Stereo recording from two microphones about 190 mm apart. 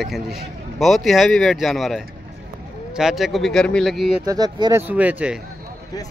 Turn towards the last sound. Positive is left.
turn(degrees=-5)  # may be behind; listen again after turning